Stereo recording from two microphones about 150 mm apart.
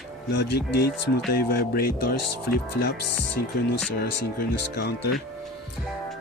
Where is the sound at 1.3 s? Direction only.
90° left.